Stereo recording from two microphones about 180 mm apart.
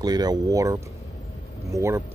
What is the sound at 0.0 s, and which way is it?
Speech, 20° right (ahead or behind).